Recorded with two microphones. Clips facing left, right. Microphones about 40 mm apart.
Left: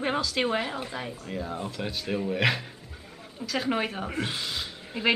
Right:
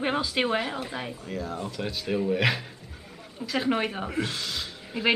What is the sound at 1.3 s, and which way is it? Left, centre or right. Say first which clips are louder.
Speech: even; centre.